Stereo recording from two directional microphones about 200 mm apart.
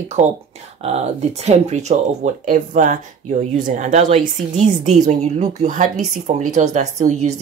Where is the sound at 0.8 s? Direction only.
30° right (ahead or behind).